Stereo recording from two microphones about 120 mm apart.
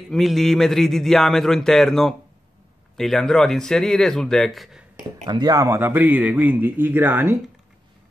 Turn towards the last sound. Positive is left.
turn(degrees=-15)  # may be behind; listen again after turning